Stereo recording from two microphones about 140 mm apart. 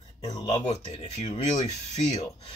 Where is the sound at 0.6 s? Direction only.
55° left (ahead or behind).